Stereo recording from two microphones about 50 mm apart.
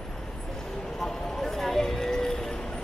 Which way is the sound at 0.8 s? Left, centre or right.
Centre.